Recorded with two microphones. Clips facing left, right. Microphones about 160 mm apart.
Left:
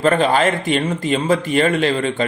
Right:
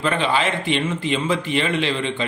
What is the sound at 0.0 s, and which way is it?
A man's voice, 45° left (ahead or behind).